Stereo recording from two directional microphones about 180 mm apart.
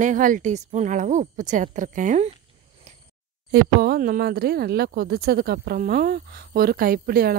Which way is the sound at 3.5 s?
60° right (ahead or behind).